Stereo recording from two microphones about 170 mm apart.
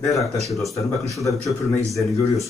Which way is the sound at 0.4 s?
Centre (ahead or behind).